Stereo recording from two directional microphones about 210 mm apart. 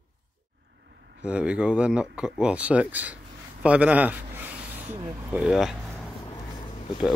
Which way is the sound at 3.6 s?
5° right (ahead or behind).